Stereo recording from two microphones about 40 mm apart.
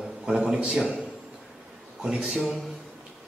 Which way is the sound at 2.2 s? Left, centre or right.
Centre.